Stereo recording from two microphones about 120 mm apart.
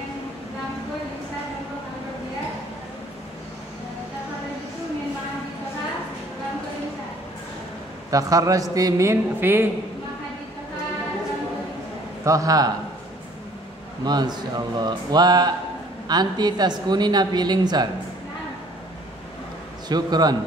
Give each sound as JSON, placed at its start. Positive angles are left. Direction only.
{"t": 8.1, "sound": "a man's voice", "side_deg": -30}
{"t": 12.3, "sound": "a woman's voice", "side_deg": -30}
{"t": 14.0, "sound": "a woman's voice", "side_deg": -35}
{"t": 19.9, "sound": "a woman's voice", "side_deg": -35}